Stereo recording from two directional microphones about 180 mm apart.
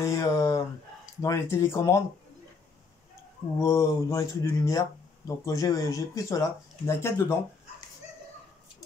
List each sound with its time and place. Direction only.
0.0 s speech: 15° left (ahead or behind)
3.6 s speech: 15° left (ahead or behind)